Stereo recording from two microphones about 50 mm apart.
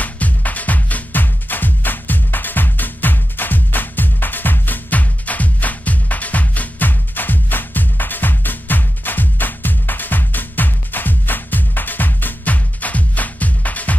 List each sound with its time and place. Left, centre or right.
0.0 s music: left